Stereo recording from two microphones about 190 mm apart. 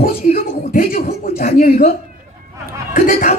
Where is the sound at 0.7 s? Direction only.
50° left (ahead or behind).